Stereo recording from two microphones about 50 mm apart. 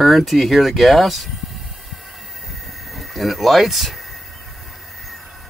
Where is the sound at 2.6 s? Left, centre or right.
Centre.